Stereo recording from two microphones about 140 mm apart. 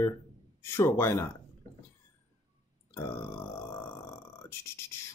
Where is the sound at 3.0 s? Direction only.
20° left (ahead or behind).